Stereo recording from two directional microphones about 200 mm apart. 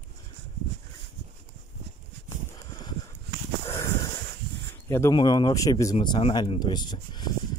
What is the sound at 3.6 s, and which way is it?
Dog, 15° left (ahead or behind).